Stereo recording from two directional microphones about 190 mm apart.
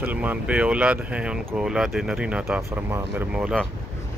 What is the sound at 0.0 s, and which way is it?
Speech, 10° right (ahead or behind).